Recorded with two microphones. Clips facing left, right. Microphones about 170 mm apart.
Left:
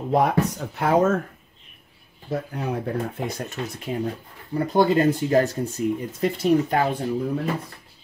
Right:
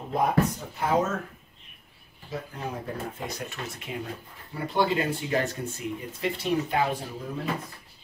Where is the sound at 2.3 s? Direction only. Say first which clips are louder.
Left 7 dB; 55° left (ahead or behind).